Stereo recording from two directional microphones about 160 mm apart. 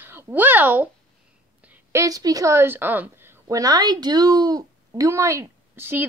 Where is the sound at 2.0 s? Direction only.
20° right (ahead or behind).